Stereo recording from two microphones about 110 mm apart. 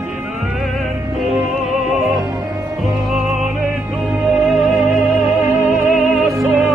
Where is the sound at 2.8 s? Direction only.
5° right (ahead or behind).